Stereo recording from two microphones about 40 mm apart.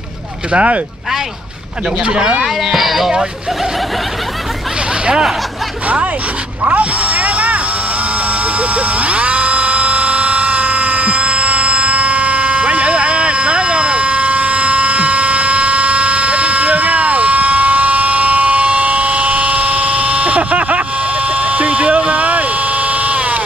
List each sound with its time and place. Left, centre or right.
0.5 s speech: right
2.0 s speech: right
2.4 s speech: centre
6.6 s a sound: right